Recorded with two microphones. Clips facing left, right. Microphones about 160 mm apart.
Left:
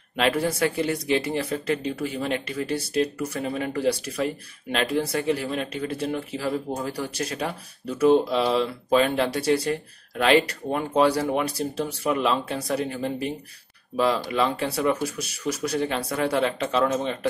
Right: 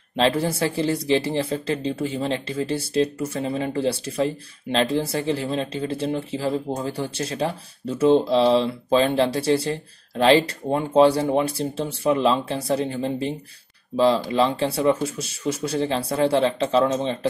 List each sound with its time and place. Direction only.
0.1 s speech: 30° right (ahead or behind)